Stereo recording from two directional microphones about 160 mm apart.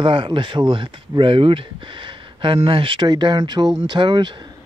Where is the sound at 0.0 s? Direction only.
30° right (ahead or behind).